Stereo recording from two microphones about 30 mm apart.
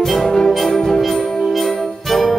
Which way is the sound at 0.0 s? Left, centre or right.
Centre.